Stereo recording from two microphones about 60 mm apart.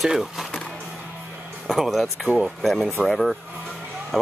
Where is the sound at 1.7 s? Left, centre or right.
Centre.